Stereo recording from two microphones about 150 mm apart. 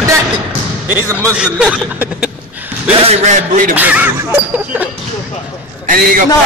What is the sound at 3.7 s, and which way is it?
Speech, 10° right (ahead or behind).